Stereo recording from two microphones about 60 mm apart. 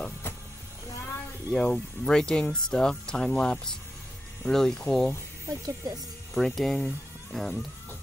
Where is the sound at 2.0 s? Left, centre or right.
Centre.